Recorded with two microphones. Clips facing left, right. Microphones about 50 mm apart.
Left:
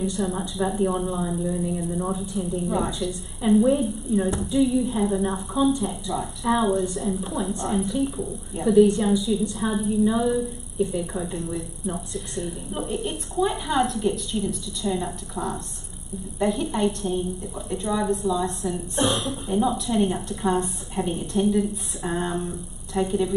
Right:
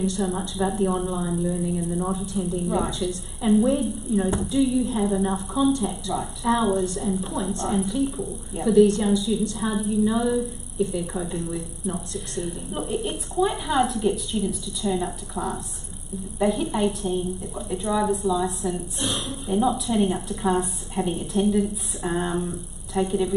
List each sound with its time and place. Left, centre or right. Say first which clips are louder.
0.2 s a woman's voice: even; centre
18.9 s a woman's voice: left 5 dB; left
19.2 s a woman's voice: even; centre